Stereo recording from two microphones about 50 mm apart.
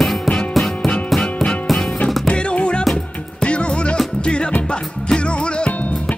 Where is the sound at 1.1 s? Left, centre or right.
Centre.